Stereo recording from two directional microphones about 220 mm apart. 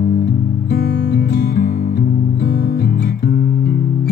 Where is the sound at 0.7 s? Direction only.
50° left (ahead or behind).